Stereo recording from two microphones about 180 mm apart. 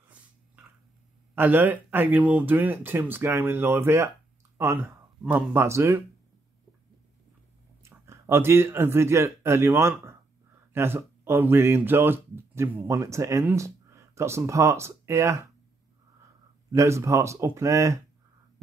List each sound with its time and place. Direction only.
1.3 s speech: 10° right (ahead or behind)
7.8 s speech: 15° right (ahead or behind)
16.7 s speech: 15° right (ahead or behind)